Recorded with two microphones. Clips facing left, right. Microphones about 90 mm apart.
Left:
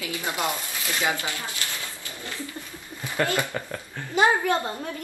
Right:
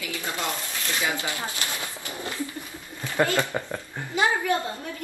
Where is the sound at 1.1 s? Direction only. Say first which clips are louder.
Right 1 dB; 20° right (ahead or behind).